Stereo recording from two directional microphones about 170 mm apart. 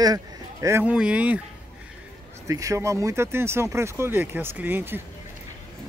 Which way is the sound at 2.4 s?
20° right (ahead or behind).